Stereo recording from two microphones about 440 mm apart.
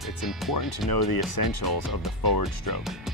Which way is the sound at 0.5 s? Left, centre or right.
Left.